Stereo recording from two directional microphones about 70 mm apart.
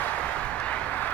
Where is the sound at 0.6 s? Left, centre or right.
Left.